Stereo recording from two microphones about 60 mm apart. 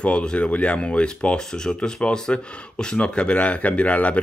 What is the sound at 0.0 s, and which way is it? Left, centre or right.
Speech, centre.